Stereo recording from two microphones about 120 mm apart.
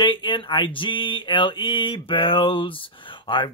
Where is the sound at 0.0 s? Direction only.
45° left (ahead or behind).